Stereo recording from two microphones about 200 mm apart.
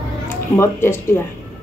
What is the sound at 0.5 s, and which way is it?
Speech, 10° left (ahead or behind).